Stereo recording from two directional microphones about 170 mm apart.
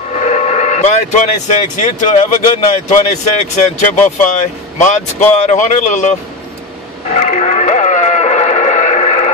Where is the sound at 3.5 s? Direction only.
45° left (ahead or behind).